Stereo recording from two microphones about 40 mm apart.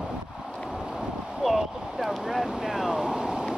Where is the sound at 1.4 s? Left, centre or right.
Centre.